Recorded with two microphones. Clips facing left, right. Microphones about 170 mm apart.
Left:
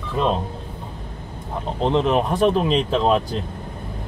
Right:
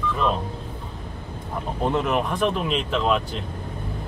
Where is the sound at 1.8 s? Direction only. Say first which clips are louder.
Left 4 dB; 25° left (ahead or behind).